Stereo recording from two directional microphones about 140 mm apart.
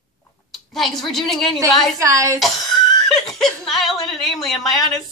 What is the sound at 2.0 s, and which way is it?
Speech, 20° right (ahead or behind).